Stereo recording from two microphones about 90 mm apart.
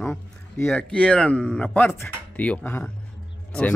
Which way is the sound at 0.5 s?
25° left (ahead or behind).